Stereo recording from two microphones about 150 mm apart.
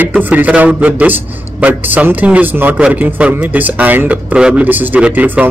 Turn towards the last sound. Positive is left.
turn(degrees=-10)  # may be behind; listen again after turning